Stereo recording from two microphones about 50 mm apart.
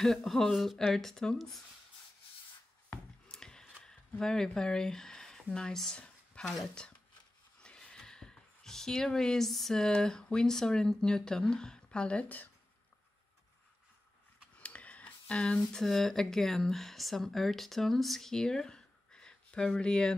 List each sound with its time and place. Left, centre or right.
0.0 s speech: centre
3.3 s a sound: centre
4.2 s speech: centre
5.9 s a sound: left
6.8 s speech: centre
14.6 s speech: left